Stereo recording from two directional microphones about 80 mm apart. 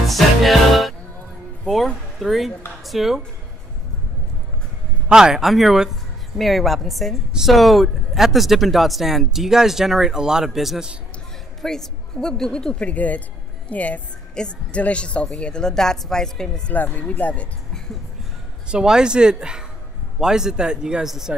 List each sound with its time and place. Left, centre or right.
0.1 s music: centre
1.6 s speech: centre
5.0 s a man's voice: centre
16.7 s a woman's voice: left
18.7 s a man's voice: centre